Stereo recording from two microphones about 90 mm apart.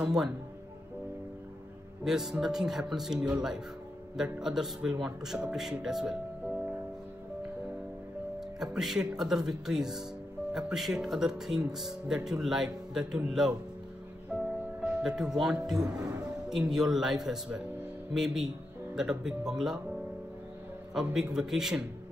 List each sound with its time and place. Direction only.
0.0 s speech: 5° right (ahead or behind)
2.0 s speech: 5° right (ahead or behind)
8.4 s speech: 5° right (ahead or behind)
14.3 s music: 10° right (ahead or behind)
15.0 s speech: 5° right (ahead or behind)
15.8 s speech: 45° right (ahead or behind)
16.4 s speech: 5° right (ahead or behind)
20.9 s speech: 5° right (ahead or behind)